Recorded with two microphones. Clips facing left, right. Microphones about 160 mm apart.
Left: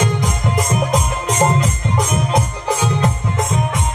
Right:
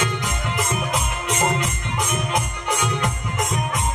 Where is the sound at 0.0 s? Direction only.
40° left (ahead or behind).